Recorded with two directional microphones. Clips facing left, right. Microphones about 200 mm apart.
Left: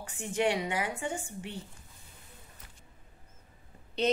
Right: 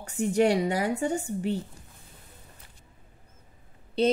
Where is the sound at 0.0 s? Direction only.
40° right (ahead or behind).